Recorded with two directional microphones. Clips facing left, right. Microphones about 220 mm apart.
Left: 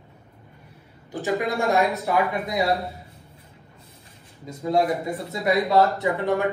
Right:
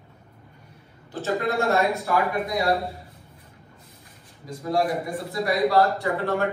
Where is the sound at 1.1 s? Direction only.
15° left (ahead or behind).